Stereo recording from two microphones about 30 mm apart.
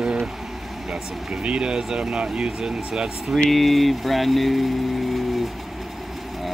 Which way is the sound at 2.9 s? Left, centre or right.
Right.